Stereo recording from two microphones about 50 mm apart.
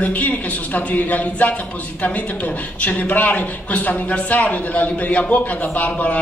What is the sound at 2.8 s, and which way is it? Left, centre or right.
A man's voice, left.